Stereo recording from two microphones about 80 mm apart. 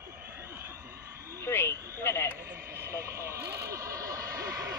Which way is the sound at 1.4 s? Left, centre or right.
Left.